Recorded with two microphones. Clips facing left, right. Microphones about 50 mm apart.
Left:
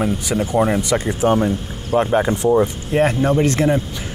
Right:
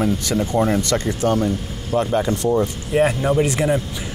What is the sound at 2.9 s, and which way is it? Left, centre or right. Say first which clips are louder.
Speech: even; centre.